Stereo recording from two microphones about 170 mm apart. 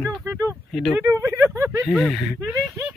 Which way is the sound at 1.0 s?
15° right (ahead or behind).